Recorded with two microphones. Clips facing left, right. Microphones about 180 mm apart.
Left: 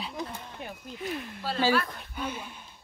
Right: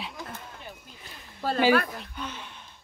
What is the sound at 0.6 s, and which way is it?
Speech, 80° left.